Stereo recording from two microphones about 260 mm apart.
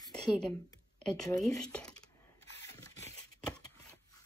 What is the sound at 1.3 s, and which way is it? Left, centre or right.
Speech, centre.